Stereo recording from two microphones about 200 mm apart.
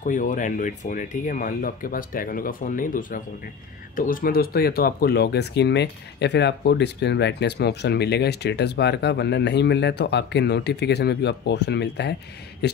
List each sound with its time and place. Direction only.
0.0 s speech: 40° left (ahead or behind); by 12.8 s 55° left (ahead or behind)